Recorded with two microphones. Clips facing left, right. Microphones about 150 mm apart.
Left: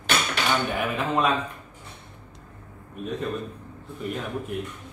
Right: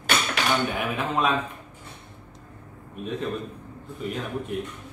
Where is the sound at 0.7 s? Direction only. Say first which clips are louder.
Left 1 dB; centre (ahead or behind).